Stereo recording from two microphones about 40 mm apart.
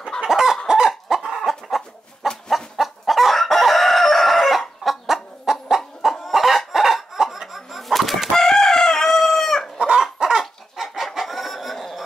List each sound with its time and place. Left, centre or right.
0.3 s chicken: centre
9.8 s chicken: centre
10.1 s dog: centre
10.8 s chicken: centre